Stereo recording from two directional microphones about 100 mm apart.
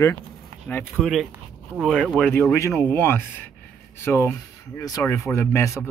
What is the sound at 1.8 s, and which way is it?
Speech, 5° left (ahead or behind).